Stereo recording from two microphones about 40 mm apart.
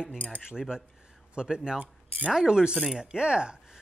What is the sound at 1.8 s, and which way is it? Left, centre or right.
Speech, right.